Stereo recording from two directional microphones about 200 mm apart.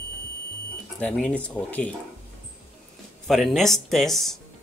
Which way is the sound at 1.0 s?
5° left (ahead or behind).